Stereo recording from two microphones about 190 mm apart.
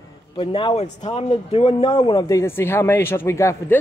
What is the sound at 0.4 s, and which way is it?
Speech, 25° left (ahead or behind).